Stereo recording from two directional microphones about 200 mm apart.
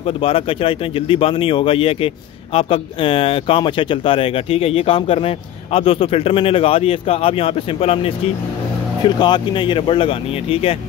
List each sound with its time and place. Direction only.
0.0 s speech: 30° left (ahead or behind)